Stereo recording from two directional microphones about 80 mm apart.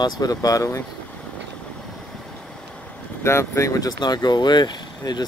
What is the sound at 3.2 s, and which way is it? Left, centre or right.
Speech, left.